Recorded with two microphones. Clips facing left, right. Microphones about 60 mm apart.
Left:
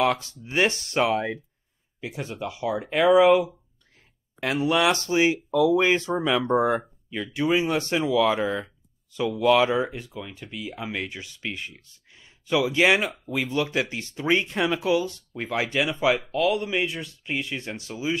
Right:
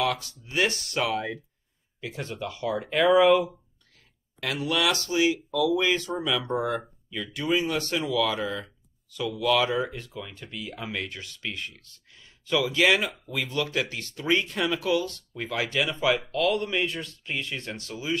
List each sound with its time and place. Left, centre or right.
0.0 s speech: left
2.0 s speech: centre
4.4 s speech: left